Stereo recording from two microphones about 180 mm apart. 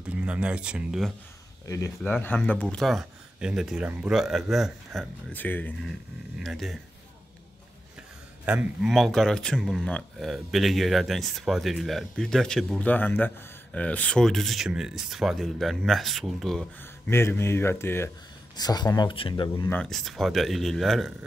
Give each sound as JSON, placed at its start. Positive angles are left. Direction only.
{"t": 0.0, "sound": "speech", "side_deg": -5}
{"t": 2.0, "sound": "speech", "side_deg": 5}
{"t": 5.3, "sound": "speech", "side_deg": 10}
{"t": 8.5, "sound": "speech", "side_deg": -5}
{"t": 17.1, "sound": "speech", "side_deg": 15}
{"t": 19.7, "sound": "speech", "side_deg": 5}